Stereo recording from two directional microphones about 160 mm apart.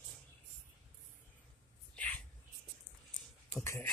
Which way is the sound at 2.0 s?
10° left (ahead or behind).